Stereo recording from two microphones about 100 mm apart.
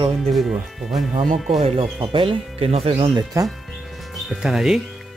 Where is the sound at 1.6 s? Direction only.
90° right.